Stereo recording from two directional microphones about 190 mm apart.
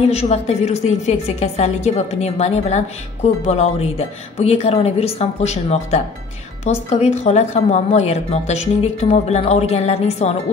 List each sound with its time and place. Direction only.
0.1 s a woman's voice: 35° left (ahead or behind)